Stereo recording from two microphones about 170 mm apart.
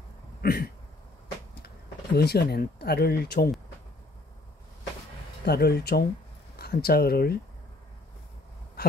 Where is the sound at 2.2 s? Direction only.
70° left (ahead or behind).